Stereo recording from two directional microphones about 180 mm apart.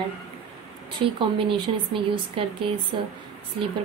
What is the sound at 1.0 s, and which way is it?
Speech, 30° right (ahead or behind).